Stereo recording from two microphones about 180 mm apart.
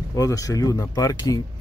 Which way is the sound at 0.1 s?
20° left (ahead or behind).